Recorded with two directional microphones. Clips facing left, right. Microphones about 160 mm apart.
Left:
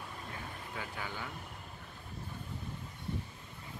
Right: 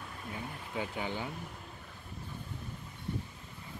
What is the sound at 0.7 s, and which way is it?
Speech, 20° right (ahead or behind).